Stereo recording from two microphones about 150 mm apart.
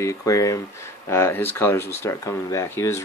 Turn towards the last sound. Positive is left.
turn(degrees=15)  # may be behind; listen again after turning